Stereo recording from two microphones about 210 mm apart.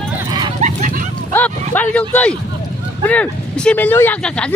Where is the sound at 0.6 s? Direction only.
35° right (ahead or behind).